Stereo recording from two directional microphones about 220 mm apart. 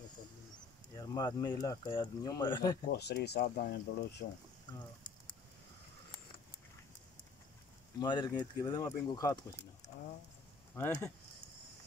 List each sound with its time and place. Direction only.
0.9 s speech: 15° left (ahead or behind)
2.9 s speech: 50° left (ahead or behind)
4.7 s speech: 20° left (ahead or behind)
8.0 s speech: 20° left (ahead or behind)
10.8 s speech: 10° left (ahead or behind)